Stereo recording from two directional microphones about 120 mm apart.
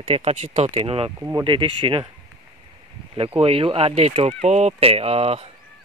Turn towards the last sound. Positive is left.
turn(degrees=-55)  # may be behind; listen again after turning